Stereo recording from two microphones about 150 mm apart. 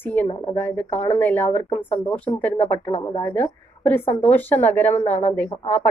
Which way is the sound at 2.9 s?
45° left (ahead or behind).